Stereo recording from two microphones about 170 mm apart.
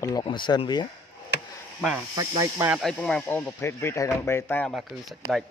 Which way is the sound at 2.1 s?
20° right (ahead or behind).